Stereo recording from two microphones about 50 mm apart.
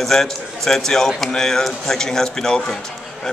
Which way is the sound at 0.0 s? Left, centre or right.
Centre.